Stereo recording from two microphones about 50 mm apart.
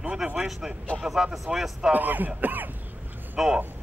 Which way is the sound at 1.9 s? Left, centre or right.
Right.